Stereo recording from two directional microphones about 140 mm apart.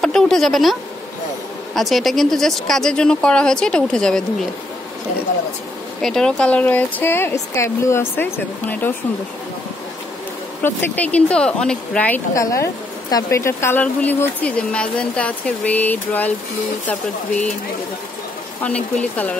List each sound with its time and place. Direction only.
0.0 s speech: 5° left (ahead or behind)
1.8 s speech: centre (ahead or behind)
6.0 s a woman's voice: 5° left (ahead or behind)
10.6 s a woman's voice: 15° left (ahead or behind)
12.4 s a woman's voice: 20° left (ahead or behind)
18.6 s a woman's voice: 10° left (ahead or behind)